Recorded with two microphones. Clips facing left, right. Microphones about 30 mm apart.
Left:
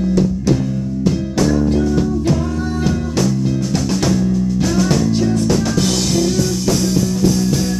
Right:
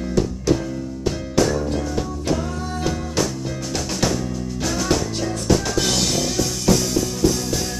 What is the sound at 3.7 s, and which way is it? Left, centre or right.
Music, centre.